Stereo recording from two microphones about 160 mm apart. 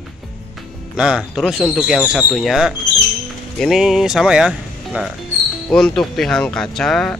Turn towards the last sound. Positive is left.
turn(degrees=0)  # may be behind; listen again after turning